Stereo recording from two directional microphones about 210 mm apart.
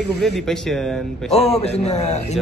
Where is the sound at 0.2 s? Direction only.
Centre (ahead or behind).